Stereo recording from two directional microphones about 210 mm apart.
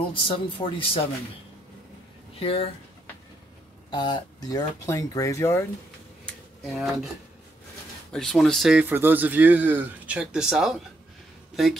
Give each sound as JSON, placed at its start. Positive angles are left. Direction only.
{"t": 0.1, "sound": "speech", "side_deg": 25}
{"t": 2.3, "sound": "speech", "side_deg": 25}
{"t": 3.9, "sound": "speech", "side_deg": 20}
{"t": 6.2, "sound": "a sound", "side_deg": 0}
{"t": 8.1, "sound": "speech", "side_deg": 0}